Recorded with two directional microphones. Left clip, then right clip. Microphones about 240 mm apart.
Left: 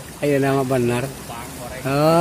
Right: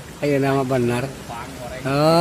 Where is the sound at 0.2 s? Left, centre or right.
Centre.